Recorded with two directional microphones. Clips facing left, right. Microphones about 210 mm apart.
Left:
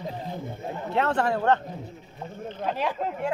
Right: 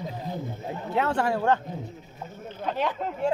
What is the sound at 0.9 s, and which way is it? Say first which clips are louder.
Speech: left 1 dB; 5° right (ahead or behind).